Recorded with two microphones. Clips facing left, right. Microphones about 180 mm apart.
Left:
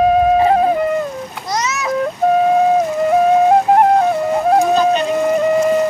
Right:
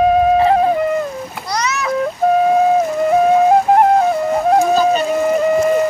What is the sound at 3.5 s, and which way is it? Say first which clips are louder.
Music: even; centre (ahead or behind).